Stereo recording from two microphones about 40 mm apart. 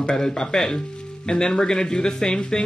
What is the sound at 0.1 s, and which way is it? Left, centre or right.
Speech, centre.